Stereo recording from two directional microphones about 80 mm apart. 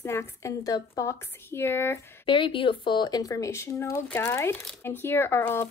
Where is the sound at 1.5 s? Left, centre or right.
Left.